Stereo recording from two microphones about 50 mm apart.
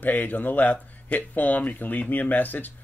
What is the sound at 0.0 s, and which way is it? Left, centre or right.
Speech, left.